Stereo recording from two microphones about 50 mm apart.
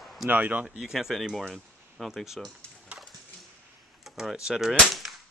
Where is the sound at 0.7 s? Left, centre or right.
Centre.